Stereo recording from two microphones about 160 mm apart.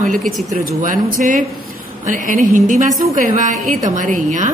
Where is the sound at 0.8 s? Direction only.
55° right (ahead or behind).